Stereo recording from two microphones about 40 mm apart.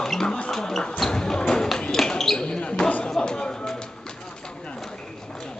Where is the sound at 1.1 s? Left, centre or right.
Centre.